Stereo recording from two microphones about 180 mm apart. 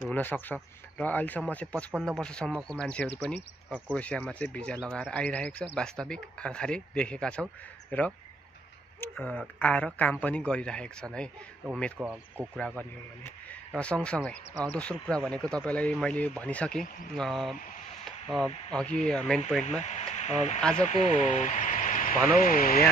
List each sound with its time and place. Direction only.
0.0 s speech: 10° left (ahead or behind)
12.0 s speech: 5° right (ahead or behind)
12.5 s speech: 5° left (ahead or behind)
18.7 s speech: 5° left (ahead or behind)
19.6 s speech: 40° left (ahead or behind)